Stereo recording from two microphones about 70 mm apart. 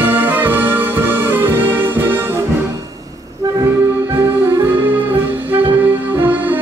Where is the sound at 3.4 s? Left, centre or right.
Right.